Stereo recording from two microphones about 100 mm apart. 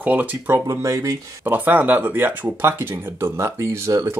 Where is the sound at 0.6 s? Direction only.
35° right (ahead or behind).